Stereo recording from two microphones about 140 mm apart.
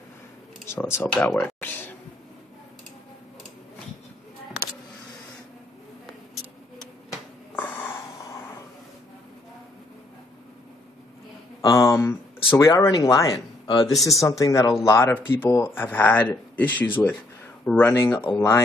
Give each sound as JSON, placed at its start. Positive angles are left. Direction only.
{"t": 0.7, "sound": "speech", "side_deg": 15}
{"t": 7.5, "sound": "snort", "side_deg": 10}
{"t": 11.6, "sound": "speech", "side_deg": 25}